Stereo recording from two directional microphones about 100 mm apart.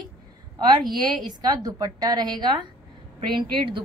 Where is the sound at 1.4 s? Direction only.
40° right (ahead or behind).